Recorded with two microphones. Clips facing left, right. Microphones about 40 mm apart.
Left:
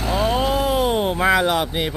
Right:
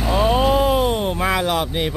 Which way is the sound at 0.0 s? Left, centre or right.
Centre.